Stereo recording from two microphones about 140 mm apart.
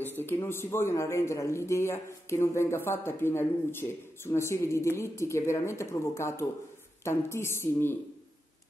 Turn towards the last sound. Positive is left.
turn(degrees=15)  # may be behind; listen again after turning